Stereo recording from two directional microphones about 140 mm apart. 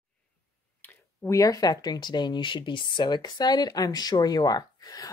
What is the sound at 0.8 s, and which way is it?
Speech, 20° left (ahead or behind).